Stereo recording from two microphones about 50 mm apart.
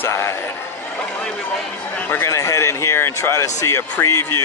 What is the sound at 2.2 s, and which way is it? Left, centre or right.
Speech, left.